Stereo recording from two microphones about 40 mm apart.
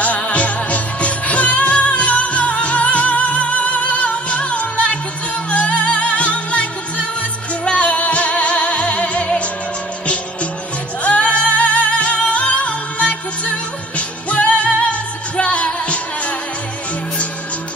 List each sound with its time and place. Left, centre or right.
0.0 s music: left
11.1 s music: left